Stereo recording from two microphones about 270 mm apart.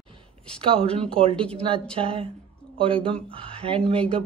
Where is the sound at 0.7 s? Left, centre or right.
Right.